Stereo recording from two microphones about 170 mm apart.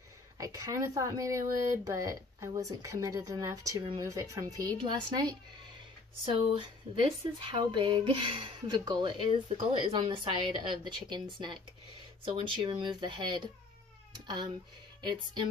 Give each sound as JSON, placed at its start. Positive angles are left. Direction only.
{"t": 0.4, "sound": "speech", "side_deg": -20}